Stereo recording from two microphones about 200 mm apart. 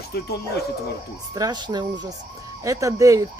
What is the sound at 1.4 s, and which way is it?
Speech, 20° right (ahead or behind).